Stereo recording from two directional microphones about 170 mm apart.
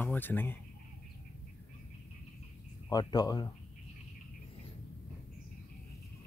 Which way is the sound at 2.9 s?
25° left (ahead or behind).